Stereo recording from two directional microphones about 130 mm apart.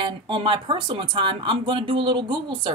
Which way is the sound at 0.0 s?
40° right (ahead or behind).